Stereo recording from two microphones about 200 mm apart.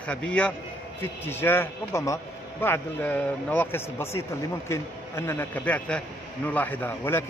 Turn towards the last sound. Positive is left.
turn(degrees=10)  # may be behind; listen again after turning